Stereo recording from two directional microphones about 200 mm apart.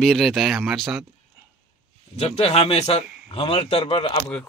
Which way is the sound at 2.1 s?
30° left (ahead or behind).